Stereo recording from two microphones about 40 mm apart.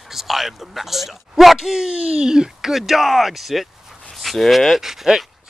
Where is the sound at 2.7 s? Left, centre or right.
Centre.